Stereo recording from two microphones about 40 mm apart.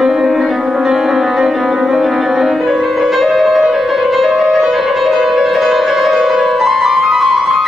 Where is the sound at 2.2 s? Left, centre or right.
Centre.